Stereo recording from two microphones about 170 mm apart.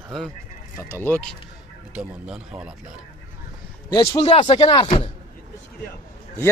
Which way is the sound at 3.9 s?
30° left (ahead or behind).